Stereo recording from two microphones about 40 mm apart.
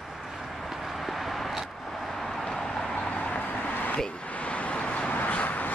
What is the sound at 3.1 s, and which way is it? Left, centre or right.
Vehicle, left.